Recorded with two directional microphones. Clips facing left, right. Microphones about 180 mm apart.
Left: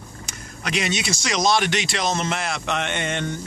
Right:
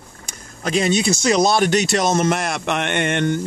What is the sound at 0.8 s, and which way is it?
Speech, 35° right (ahead or behind).